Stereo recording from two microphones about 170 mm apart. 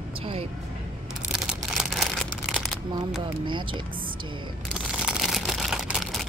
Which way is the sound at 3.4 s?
30° right (ahead or behind).